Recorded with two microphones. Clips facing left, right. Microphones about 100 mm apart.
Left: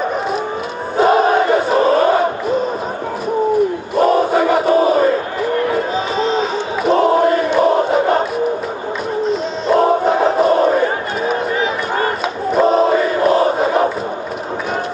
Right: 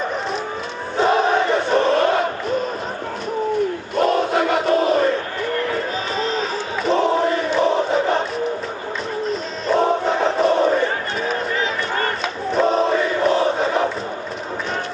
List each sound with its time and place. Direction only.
0.9 s crowd: 5° left (ahead or behind)
3.9 s crowd: 5° left (ahead or behind)
6.1 s music: centre (ahead or behind)
7.0 s chant: 5° left (ahead or behind)
7.3 s crowd: 5° left (ahead or behind)
9.3 s music: 5° left (ahead or behind)
10.2 s crowd: 5° left (ahead or behind)
12.5 s a sound: 5° left (ahead or behind)
13.3 s crowd: 45° left (ahead or behind)
13.6 s crowd: 10° left (ahead or behind)